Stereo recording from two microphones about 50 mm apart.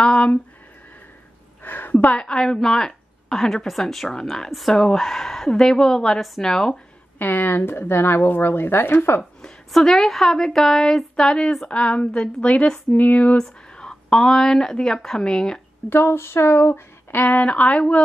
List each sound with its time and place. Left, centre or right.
0.0 s a sound: left
1.6 s a sound: left
2.1 s a woman's voice: centre
4.5 s a woman's voice: centre
6.2 s a woman's voice: centre
7.2 s speech: left
9.7 s a woman's voice: centre; by 13.4 s left
13.4 s speech: centre
15.9 s speech: left
17.1 s a woman's voice: left